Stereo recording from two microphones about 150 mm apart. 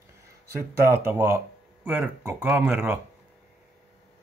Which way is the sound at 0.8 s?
15° right (ahead or behind).